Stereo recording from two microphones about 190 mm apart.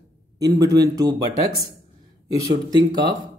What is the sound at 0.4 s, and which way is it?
Speech, 20° right (ahead or behind).